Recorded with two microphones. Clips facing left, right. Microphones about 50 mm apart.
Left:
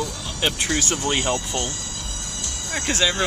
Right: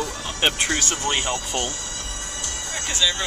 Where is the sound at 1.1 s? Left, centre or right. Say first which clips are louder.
Left 3 dB; centre.